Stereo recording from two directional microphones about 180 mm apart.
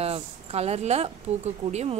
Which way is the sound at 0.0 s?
35° right (ahead or behind).